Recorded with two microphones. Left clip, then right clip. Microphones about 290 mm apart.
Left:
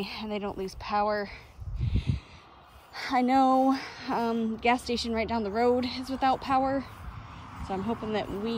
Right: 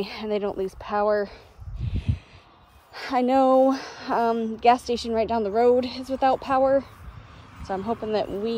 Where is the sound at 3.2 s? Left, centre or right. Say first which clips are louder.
Right 4 dB; centre.